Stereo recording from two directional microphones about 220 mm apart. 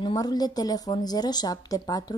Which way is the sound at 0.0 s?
20° left (ahead or behind).